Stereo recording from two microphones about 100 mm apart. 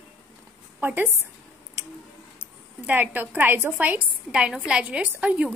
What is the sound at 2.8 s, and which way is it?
A woman's voice, 20° right (ahead or behind).